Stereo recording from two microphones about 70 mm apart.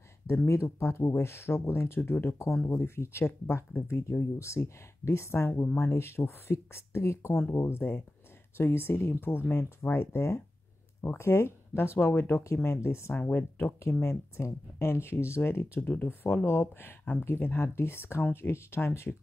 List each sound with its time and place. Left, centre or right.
0.5 s speech: left
13.1 s speech: left
15.8 s speech: left